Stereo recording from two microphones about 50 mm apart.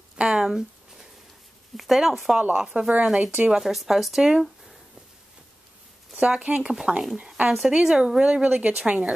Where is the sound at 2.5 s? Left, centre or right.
Centre.